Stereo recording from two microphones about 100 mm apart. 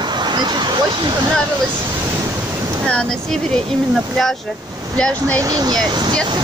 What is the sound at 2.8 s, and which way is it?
Speech, 10° left (ahead or behind).